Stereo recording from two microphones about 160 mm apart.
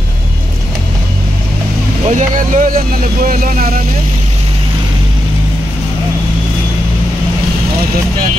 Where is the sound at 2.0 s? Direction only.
50° right (ahead or behind).